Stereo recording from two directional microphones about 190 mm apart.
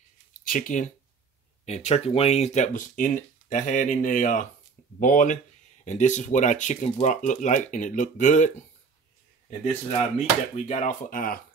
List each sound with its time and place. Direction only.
0.5 s speech: 45° left (ahead or behind)
9.5 s speech: 35° left (ahead or behind)